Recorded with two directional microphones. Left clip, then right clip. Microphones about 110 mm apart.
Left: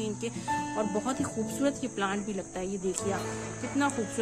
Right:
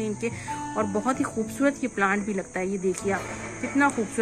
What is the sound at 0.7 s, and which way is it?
Speech, 5° left (ahead or behind).